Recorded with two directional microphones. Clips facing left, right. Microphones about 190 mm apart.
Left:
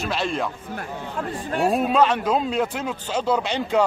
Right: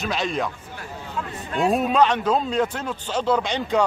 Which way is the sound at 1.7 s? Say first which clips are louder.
Even; centre (ahead or behind).